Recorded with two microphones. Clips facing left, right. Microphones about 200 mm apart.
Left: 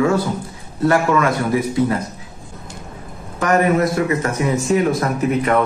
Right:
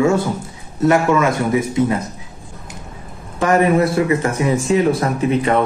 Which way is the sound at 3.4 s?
30° right (ahead or behind).